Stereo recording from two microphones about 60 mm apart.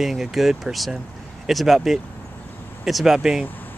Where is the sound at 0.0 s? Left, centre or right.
Centre.